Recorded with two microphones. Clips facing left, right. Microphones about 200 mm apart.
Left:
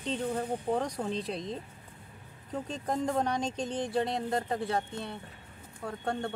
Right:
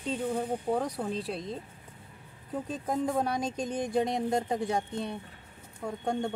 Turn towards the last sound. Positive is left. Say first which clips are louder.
# right 2 dB
turn(degrees=-15)  # may be behind; listen again after turning